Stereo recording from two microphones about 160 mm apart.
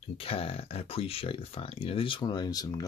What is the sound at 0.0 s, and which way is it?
Speech, 35° left (ahead or behind).